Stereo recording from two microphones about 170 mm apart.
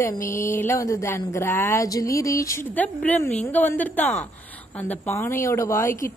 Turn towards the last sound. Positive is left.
turn(degrees=15)  # may be behind; listen again after turning